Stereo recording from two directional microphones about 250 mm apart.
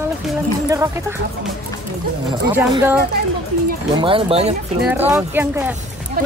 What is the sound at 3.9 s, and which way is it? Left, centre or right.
Speech, right.